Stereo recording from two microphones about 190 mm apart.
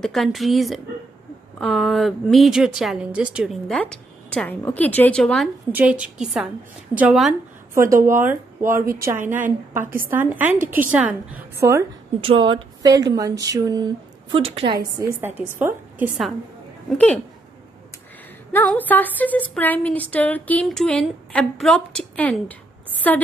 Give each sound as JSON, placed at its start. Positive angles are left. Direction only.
{"t": 0.0, "sound": "a woman's voice", "side_deg": 0}
{"t": 12.2, "sound": "speech", "side_deg": -25}
{"t": 15.1, "sound": "a woman's voice", "side_deg": -10}
{"t": 18.5, "sound": "speech", "side_deg": 10}